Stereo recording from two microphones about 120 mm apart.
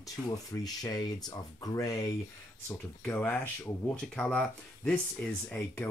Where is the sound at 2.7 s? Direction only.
15° left (ahead or behind).